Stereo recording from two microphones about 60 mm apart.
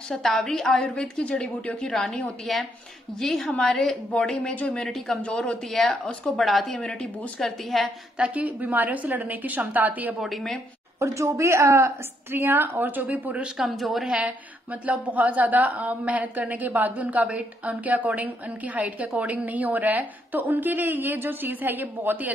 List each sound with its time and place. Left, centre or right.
0.1 s a woman's voice: centre
5.2 s a woman's voice: centre
5.7 s a woman's voice: centre
8.2 s a woman's voice: right
10.2 s a woman's voice: centre
11.0 s a woman's voice: right
12.3 s a woman's voice: right
13.6 s a woman's voice: centre
14.1 s a woman's voice: right